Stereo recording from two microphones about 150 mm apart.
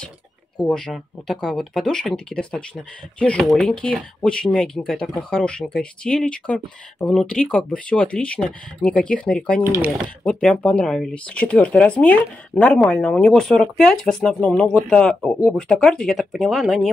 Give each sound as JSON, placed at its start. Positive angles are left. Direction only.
{"t": 0.7, "sound": "speech", "side_deg": 5}
{"t": 9.6, "sound": "speech", "side_deg": -15}
{"t": 10.2, "sound": "speech", "side_deg": 5}